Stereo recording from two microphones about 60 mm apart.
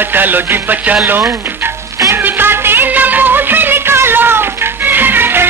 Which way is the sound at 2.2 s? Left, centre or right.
Right.